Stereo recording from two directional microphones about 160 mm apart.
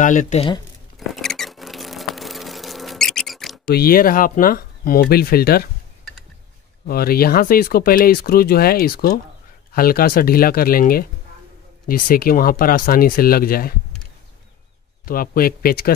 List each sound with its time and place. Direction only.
0.0 s speech: 55° left (ahead or behind)
0.9 s rodents: centre (ahead or behind)
3.7 s speech: 65° left (ahead or behind)
6.9 s speech: 70° left (ahead or behind)
15.0 s speech: 65° left (ahead or behind)